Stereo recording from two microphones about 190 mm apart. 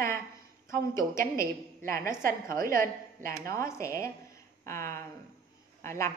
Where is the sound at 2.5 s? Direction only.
50° right (ahead or behind).